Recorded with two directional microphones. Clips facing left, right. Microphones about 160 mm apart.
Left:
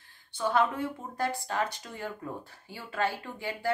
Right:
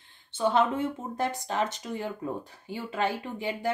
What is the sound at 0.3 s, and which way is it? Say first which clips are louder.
Speech: right 3 dB; 20° right (ahead or behind).